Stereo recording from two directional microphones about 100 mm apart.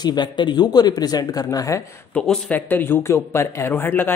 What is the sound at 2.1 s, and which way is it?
Speech, 10° left (ahead or behind).